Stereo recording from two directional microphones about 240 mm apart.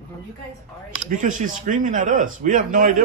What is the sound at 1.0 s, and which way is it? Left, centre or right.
A man's voice, right.